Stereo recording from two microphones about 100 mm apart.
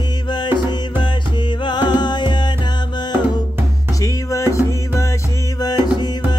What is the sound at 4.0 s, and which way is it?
Music, 35° left (ahead or behind).